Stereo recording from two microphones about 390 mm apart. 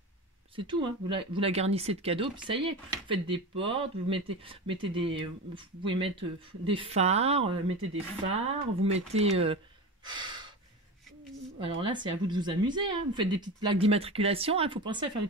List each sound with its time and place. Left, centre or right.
0.6 s speech: centre
10.0 s gasp: centre
11.6 s speech: centre